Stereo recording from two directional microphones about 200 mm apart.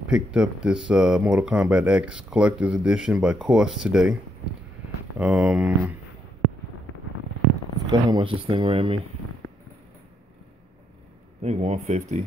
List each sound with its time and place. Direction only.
0.1 s speech: 5° right (ahead or behind)
5.2 s speech: 5° right (ahead or behind)
7.8 s speech: 20° right (ahead or behind)
11.4 s speech: 35° right (ahead or behind)